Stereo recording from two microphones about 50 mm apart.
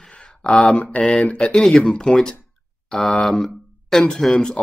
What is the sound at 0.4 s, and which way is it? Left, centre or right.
Speech, centre.